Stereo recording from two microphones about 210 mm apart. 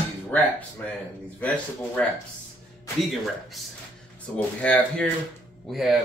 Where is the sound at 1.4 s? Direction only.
5° left (ahead or behind).